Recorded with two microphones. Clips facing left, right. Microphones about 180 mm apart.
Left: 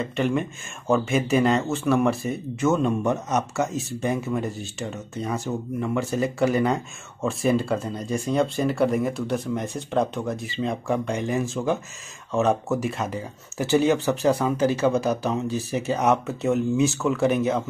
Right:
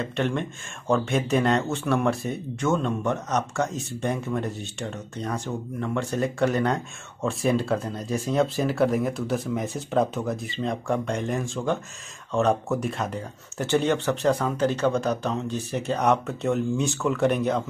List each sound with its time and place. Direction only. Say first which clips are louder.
0.0 s speech: left 2 dB; 5° left (ahead or behind)